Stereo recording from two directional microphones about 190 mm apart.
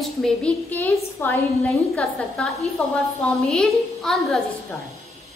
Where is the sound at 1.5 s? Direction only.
Centre (ahead or behind).